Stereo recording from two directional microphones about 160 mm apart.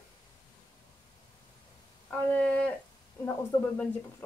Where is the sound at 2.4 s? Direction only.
10° left (ahead or behind).